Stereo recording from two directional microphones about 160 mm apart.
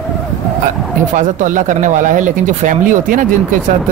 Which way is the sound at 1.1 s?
55° right (ahead or behind).